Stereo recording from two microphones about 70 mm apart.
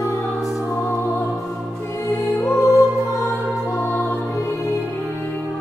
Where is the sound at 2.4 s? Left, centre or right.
Left.